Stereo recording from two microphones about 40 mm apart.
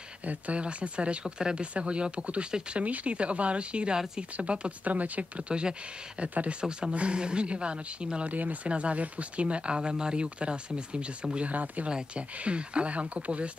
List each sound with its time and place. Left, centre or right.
0.2 s speech: right
4.8 s speech: right
5.5 s speech: right
8.3 s speech: right
8.6 s speech: right
11.5 s speech: right
12.4 s speech: right